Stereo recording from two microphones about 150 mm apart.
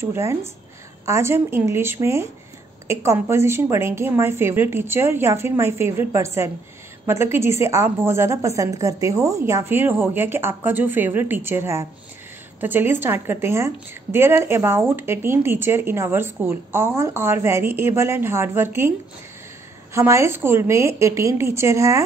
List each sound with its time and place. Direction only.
0.0 s a woman's voice: 20° right (ahead or behind)